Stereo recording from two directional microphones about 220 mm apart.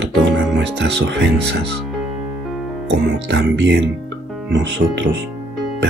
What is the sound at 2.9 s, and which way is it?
Speech, 50° right (ahead or behind).